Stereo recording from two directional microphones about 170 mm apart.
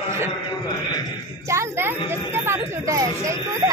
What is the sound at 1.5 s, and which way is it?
Speech, 15° right (ahead or behind).